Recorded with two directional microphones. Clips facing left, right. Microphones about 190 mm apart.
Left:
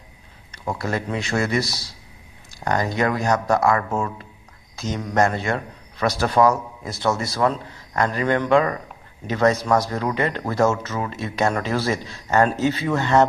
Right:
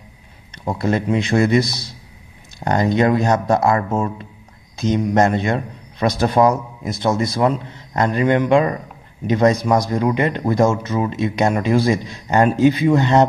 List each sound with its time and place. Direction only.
0.7 s speech: 20° right (ahead or behind)